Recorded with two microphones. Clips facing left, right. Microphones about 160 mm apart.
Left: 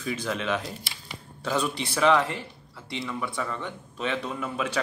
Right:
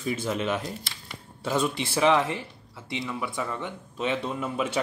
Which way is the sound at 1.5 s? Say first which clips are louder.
Right 2 dB; 20° right (ahead or behind).